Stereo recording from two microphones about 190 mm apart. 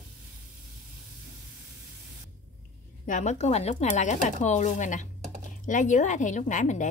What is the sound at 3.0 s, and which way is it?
A woman's voice, 40° left (ahead or behind).